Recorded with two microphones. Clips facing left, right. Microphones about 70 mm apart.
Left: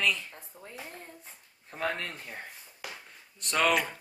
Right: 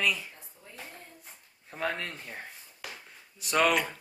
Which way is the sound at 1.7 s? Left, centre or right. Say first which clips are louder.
Even; centre.